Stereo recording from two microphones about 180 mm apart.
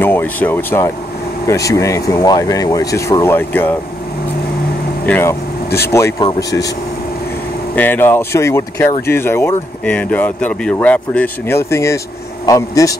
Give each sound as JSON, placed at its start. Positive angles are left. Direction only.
{"t": 0.0, "sound": "speech", "side_deg": 10}
{"t": 5.0, "sound": "vehicle", "side_deg": 10}
{"t": 5.9, "sound": "speech", "side_deg": 15}
{"t": 7.7, "sound": "speech", "side_deg": 10}